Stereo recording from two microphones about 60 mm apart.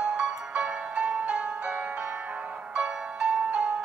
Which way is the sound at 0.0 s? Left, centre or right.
Centre.